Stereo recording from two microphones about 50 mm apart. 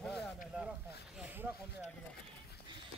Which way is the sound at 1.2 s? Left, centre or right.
Right.